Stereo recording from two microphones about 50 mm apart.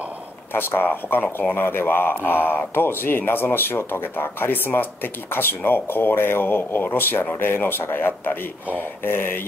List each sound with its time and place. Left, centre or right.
0.5 s speech: left
0.8 s speech: left
1.5 s speech: left